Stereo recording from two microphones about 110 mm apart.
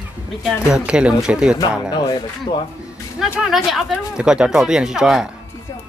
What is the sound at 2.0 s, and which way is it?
Speech, 45° left (ahead or behind).